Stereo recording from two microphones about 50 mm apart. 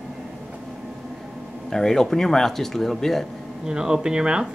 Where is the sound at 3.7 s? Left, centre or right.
Centre.